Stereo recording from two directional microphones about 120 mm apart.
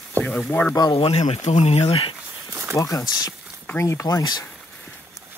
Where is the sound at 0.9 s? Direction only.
55° left (ahead or behind).